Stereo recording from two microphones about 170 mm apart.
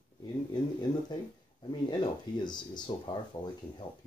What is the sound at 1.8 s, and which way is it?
Speech, 25° left (ahead or behind).